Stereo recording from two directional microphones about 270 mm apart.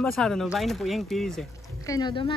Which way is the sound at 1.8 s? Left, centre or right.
Centre.